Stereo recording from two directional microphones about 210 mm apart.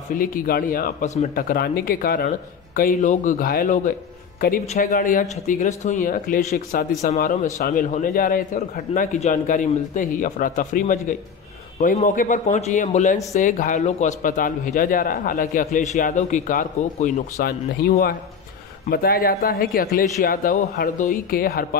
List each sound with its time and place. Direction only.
0.1 s speech: 40° left (ahead or behind)